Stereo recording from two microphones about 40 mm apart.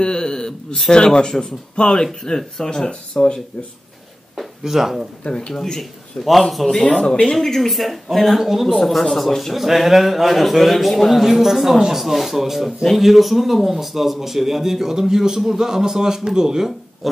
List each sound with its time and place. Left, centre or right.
0.0 s a sound: centre
0.9 s a man's voice: left
4.4 s speech: centre
5.2 s speech: left
5.5 s a man's voice: centre
6.7 s speech: left
7.3 s a man's voice: centre
8.7 s a man's voice: centre
17.0 s pig: centre